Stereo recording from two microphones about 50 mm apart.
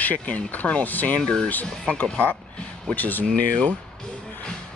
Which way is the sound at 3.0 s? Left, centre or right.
Left.